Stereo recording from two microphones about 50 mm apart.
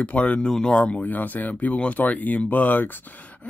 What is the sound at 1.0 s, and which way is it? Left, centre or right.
Speech, left.